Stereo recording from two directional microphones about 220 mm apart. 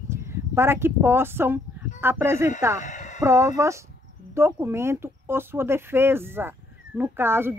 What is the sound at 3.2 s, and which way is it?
Speech, 15° right (ahead or behind).